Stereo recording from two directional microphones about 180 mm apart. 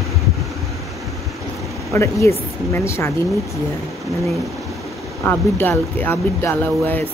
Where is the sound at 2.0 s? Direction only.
15° left (ahead or behind).